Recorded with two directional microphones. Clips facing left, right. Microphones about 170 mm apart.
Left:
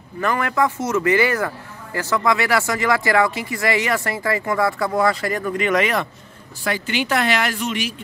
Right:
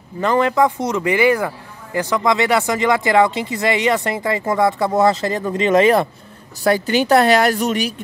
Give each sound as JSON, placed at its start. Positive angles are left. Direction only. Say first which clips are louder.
{"t": 0.2, "sound": "speech", "louder": "right 5 dB", "side_deg": -20}
{"t": 6.6, "sound": "speech", "louder": "right 7 dB", "side_deg": -40}